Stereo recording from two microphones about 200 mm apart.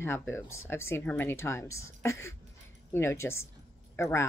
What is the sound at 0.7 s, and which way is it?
Speech, 10° left (ahead or behind).